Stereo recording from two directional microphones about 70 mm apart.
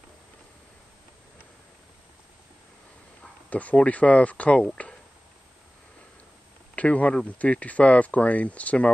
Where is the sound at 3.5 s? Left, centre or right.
Centre.